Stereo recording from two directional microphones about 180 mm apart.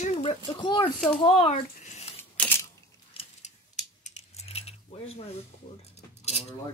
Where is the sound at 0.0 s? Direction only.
35° left (ahead or behind).